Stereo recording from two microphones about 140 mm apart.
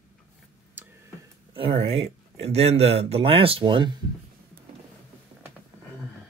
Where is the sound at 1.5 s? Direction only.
40° right (ahead or behind).